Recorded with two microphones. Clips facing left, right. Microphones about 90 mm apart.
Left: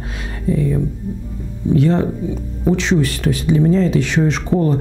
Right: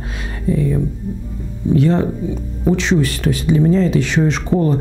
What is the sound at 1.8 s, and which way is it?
Speech, 15° right (ahead or behind).